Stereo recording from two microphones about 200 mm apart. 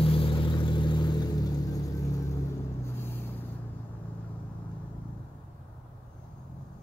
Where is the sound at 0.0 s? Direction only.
25° left (ahead or behind).